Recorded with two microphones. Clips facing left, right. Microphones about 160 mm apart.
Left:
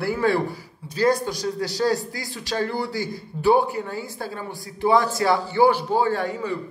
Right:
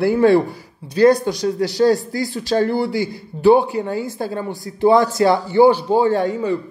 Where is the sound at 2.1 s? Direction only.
35° right (ahead or behind).